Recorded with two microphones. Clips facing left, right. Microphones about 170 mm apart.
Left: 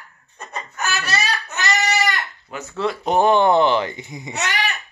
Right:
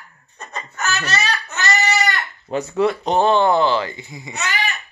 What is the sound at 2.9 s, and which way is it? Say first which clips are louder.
Speech: left 4 dB; 5° left (ahead or behind).